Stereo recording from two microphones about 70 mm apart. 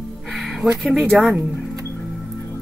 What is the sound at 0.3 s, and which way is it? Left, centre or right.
Music, centre.